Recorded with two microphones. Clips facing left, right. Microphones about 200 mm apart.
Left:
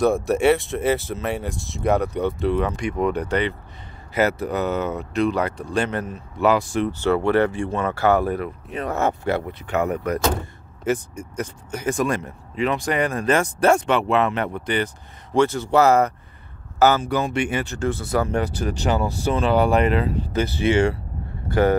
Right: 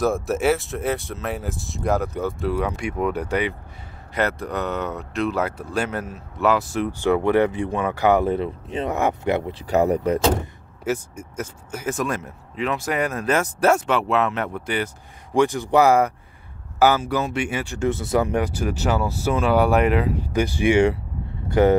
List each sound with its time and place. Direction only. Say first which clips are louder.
0.0 s speech: left 3 dB; centre (ahead or behind)
4.1 s speech: left 3 dB; 5° left (ahead or behind); by 9.6 s 20° right (ahead or behind)
9.6 s speech: right 4 dB; 35° right (ahead or behind)
10.8 s speech: left 2 dB; 5° right (ahead or behind)
15.3 s speech: even; 15° right (ahead or behind)
17.7 s speech: right 4 dB; 20° right (ahead or behind)